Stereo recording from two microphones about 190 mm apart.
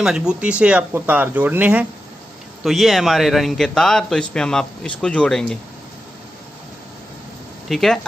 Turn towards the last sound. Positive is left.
turn(degrees=0)  # may be behind; listen again after turning